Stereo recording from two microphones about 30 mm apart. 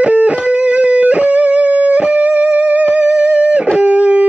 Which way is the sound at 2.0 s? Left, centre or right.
Right.